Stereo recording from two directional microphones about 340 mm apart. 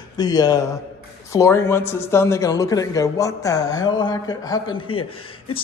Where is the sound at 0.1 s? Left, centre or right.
Centre.